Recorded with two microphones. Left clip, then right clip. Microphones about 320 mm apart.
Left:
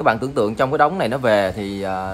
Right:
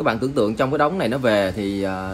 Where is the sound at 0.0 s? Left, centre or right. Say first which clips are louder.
Left 2 dB; left.